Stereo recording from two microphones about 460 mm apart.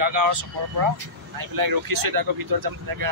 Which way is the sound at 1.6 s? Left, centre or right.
Right.